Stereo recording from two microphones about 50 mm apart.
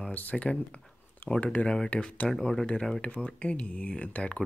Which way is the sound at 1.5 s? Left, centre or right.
Centre.